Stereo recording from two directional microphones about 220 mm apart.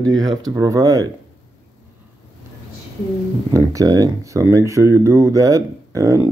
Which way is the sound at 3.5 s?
15° right (ahead or behind).